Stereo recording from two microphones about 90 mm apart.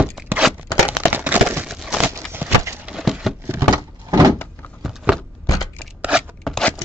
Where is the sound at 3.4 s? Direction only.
25° right (ahead or behind).